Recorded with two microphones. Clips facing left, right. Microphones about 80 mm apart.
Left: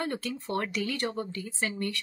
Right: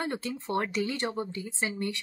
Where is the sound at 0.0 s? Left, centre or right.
Right.